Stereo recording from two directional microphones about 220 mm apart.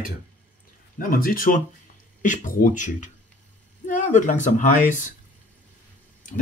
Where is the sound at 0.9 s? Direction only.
40° left (ahead or behind).